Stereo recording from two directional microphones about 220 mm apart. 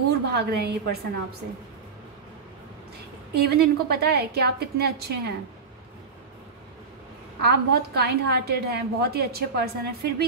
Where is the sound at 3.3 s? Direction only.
45° right (ahead or behind).